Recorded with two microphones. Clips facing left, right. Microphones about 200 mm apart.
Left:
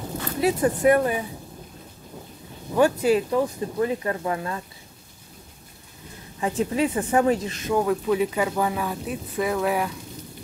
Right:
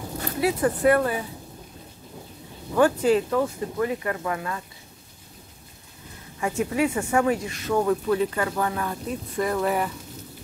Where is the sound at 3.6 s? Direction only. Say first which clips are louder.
Left 2 dB; 25° left (ahead or behind).